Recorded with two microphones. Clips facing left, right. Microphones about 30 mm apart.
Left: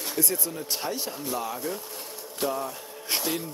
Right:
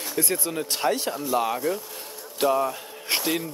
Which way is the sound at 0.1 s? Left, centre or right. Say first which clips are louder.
Right 4 dB; right.